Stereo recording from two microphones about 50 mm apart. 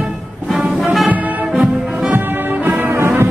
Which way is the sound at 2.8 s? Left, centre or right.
Right.